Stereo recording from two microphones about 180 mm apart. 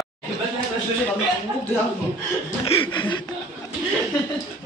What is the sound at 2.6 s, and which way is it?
Speech, 30° left (ahead or behind).